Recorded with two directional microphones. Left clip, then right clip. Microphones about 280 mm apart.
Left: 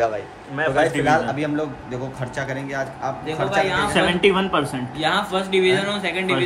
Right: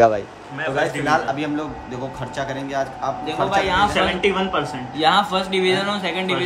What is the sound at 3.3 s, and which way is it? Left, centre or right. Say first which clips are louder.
Speech: right 1 dB; centre.